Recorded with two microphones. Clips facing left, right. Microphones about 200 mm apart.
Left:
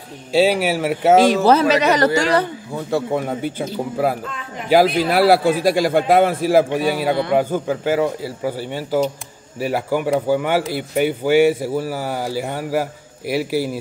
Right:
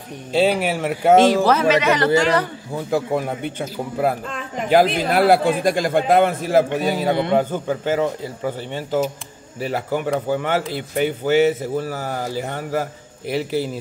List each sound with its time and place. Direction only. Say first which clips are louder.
0.3 s speech: left 2 dB; 10° left (ahead or behind)
1.5 s a man's voice: left 2 dB; 35° left (ahead or behind)
2.7 s a man's voice: even; 5° right (ahead or behind)
4.6 s speech: left 2 dB; 10° left (ahead or behind)